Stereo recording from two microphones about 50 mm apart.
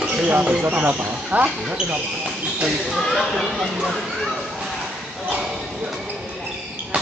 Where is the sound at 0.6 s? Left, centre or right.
Right.